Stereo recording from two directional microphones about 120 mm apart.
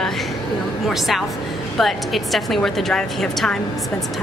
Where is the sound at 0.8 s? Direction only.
Centre (ahead or behind).